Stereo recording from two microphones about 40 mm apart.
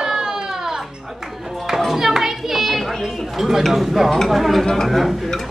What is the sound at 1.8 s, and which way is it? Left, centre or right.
Children playing, centre.